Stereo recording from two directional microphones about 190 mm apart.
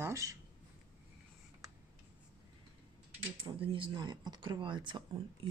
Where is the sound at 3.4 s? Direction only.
25° right (ahead or behind).